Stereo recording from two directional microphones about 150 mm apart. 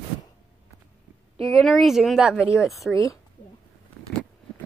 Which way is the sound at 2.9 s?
20° left (ahead or behind).